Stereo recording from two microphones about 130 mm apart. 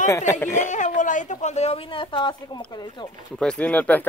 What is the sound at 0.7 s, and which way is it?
Speech, 70° left (ahead or behind).